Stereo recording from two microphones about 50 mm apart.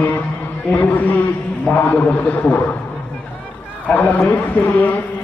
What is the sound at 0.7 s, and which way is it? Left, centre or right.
A man's voice, left.